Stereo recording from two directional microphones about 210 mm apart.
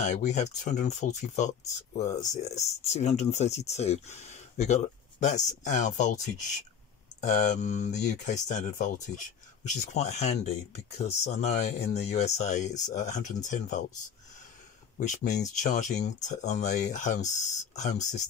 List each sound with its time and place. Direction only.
0.0 s speech: 35° left (ahead or behind)
15.0 s speech: 35° left (ahead or behind)